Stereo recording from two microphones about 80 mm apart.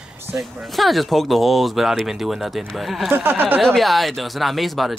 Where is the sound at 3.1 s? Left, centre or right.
Right.